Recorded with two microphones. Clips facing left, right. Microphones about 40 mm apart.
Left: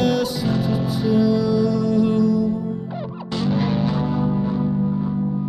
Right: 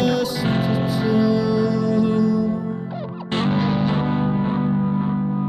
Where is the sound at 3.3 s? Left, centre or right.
Right.